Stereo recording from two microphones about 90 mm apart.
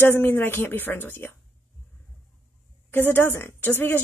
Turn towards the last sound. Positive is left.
turn(degrees=25)  # may be behind; listen again after turning